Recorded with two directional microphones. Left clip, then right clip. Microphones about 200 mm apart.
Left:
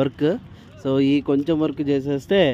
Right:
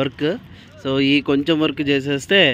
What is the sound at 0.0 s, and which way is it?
Speech, 15° left (ahead or behind).